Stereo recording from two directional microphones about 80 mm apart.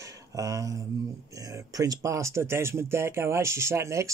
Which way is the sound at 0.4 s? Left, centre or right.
Right.